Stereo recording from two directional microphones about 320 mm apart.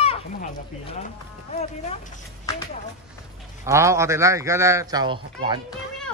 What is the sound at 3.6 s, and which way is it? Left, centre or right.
A man's voice, centre.